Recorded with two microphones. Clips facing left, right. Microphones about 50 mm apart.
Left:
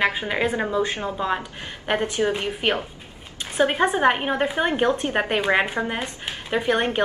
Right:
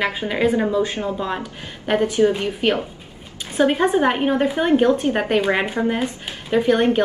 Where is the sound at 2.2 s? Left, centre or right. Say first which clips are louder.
Right 5 dB; centre.